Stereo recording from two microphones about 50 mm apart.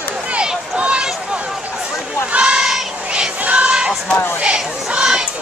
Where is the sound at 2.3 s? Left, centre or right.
Right.